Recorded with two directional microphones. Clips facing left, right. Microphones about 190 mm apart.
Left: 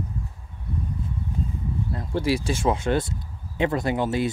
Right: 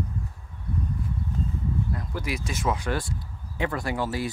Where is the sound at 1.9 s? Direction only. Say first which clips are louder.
Left 7 dB; 30° left (ahead or behind).